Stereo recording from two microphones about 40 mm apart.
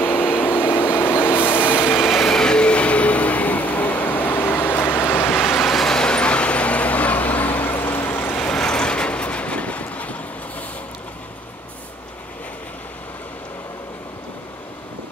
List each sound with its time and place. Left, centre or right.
0.0 s vehicle: left
2.0 s vehicle: centre; by 5.3 s left
5.3 s vehicle: centre; by 8.4 s left
8.4 s vehicle: left